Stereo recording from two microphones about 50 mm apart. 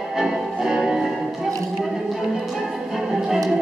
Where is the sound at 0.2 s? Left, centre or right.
Centre.